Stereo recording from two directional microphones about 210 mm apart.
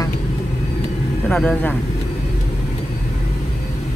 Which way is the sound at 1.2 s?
5° left (ahead or behind).